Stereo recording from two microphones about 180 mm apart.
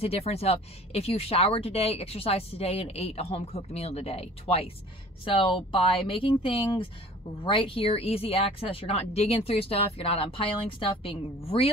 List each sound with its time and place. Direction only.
0.0 s speech: 35° left (ahead or behind)